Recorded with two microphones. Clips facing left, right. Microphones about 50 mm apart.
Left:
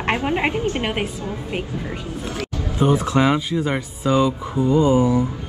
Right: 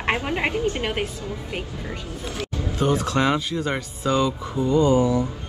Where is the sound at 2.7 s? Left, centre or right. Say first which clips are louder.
Left 4 dB; centre.